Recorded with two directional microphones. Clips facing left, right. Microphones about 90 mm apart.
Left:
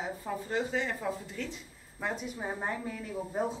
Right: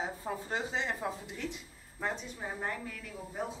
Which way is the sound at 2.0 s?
10° left (ahead or behind).